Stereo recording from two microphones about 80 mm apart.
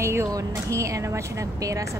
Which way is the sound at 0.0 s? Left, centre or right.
Right.